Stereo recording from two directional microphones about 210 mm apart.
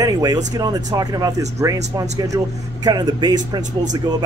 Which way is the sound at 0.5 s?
20° right (ahead or behind).